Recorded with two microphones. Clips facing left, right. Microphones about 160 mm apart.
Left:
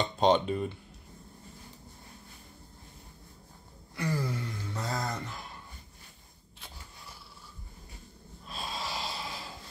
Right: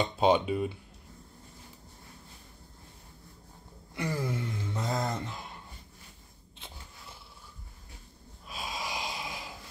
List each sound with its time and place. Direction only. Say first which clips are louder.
0.0 s speech: even; 10° right (ahead or behind)
3.9 s a sound: even; 20° right (ahead or behind)
8.5 s snort: even; 10° right (ahead or behind)